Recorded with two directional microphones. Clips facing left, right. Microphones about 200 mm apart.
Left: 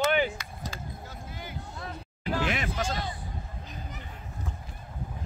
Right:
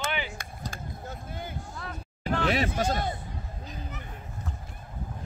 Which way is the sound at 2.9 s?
50° right (ahead or behind).